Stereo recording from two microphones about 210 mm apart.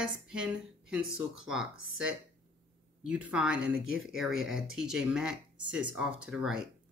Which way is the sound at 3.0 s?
5° right (ahead or behind).